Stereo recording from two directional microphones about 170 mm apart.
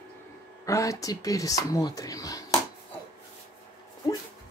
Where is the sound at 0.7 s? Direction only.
20° left (ahead or behind).